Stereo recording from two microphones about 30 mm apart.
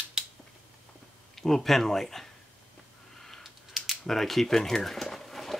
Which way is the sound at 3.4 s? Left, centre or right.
Centre.